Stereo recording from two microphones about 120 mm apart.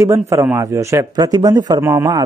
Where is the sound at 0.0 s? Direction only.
25° right (ahead or behind).